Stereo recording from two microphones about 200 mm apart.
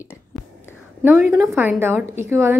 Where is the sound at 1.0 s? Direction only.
5° right (ahead or behind).